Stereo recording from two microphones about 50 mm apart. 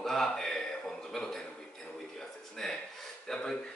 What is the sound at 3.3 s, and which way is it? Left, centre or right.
Speech, centre.